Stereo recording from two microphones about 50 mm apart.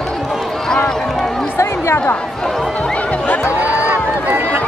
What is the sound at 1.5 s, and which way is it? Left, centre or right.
Chatter, left.